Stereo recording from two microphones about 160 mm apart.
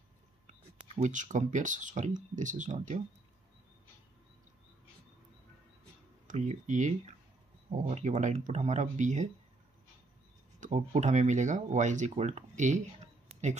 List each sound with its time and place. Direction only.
0.9 s speech: 50° right (ahead or behind)
6.2 s speech: 50° right (ahead or behind)
10.6 s speech: 45° right (ahead or behind)
13.3 s a sound: 45° right (ahead or behind)